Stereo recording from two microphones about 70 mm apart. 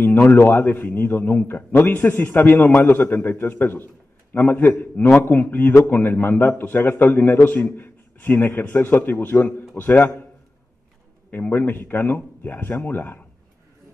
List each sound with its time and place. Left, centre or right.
0.0 s a man's voice: left
11.3 s a man's voice: left